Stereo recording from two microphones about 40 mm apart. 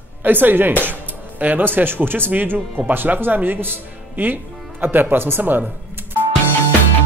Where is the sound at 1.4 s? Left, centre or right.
Right.